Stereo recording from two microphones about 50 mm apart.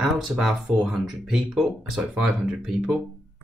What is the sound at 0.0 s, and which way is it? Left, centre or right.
Speech, centre.